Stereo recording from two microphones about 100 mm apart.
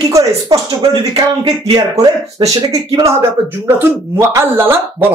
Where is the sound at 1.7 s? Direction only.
45° right (ahead or behind).